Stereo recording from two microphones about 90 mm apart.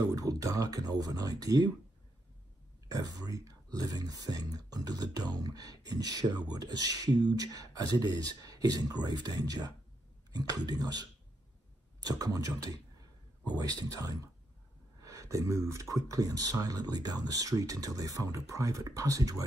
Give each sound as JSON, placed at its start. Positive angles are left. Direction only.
{"t": 0.1, "sound": "speech", "side_deg": -40}
{"t": 2.9, "sound": "speech", "side_deg": -45}